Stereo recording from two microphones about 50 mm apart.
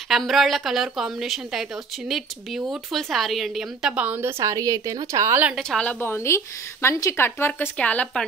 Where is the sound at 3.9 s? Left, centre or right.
Right.